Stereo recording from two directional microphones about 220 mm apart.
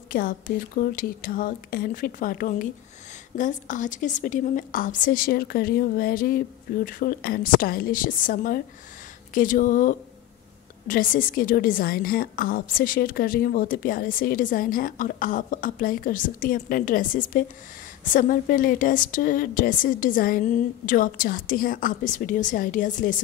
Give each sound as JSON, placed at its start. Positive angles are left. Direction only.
{"t": 0.1, "sound": "a woman's voice", "side_deg": 40}